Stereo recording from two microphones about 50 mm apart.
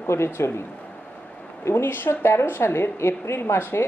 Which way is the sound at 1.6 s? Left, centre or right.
Left.